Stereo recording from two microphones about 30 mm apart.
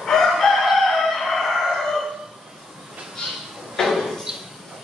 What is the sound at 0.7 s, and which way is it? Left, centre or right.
Chicken, centre.